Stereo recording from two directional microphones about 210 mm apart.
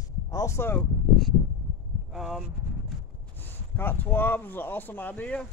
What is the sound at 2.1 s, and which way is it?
Speech, centre (ahead or behind).